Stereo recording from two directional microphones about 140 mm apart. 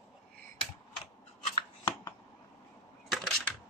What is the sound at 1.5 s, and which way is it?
Scissors, 30° left (ahead or behind).